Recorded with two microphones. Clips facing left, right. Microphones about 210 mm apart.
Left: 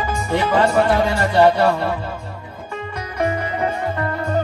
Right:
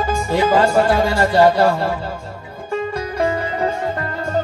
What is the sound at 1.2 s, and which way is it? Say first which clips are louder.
Music: right 2 dB; 35° right (ahead or behind).